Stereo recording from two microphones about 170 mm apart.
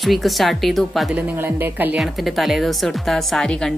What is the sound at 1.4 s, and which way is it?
Speech, 10° right (ahead or behind).